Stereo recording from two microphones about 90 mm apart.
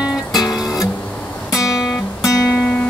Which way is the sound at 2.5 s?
15° left (ahead or behind).